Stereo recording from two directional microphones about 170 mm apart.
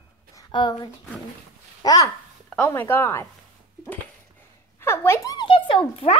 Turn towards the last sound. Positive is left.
turn(degrees=30)  # may be behind; listen again after turning